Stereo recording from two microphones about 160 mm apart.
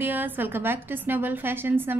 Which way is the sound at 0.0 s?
10° right (ahead or behind).